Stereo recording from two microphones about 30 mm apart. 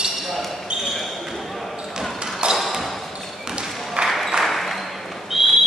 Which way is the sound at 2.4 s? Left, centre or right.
Right.